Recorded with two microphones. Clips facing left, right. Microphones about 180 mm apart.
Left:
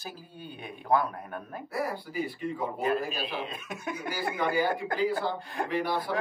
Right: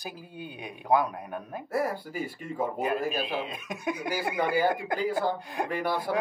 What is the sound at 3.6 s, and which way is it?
Speech, 15° right (ahead or behind).